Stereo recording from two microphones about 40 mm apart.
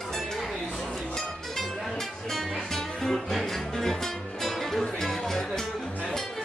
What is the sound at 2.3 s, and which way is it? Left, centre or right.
Music, centre.